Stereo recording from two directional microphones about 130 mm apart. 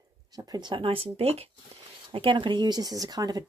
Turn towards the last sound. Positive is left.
turn(degrees=-30)  # may be behind; listen again after turning